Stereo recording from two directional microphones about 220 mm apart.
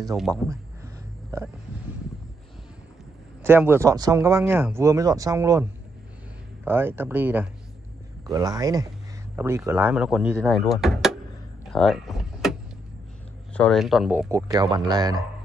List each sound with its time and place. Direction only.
3.4 s speech: 10° right (ahead or behind)
11.6 s power windows: centre (ahead or behind)
13.5 s speech: 5° left (ahead or behind)
14.3 s speech: 20° right (ahead or behind)